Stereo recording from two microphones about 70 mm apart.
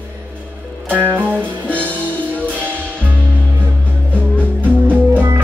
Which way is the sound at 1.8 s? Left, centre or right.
Left.